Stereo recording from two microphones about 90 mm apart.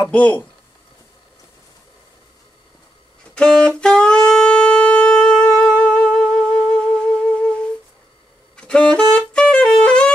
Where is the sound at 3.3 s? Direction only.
10° left (ahead or behind).